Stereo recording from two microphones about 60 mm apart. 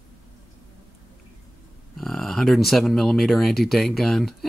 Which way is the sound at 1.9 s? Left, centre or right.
Centre.